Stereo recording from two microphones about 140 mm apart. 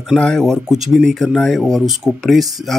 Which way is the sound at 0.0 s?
Centre (ahead or behind).